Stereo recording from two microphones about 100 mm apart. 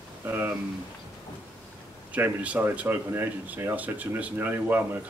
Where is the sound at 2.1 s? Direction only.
15° right (ahead or behind).